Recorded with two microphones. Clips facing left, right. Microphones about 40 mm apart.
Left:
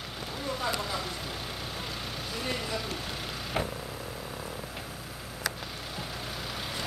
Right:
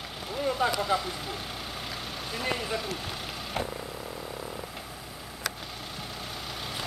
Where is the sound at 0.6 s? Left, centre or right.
Right.